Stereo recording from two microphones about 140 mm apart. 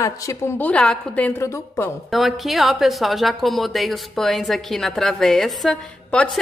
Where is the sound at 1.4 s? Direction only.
20° left (ahead or behind).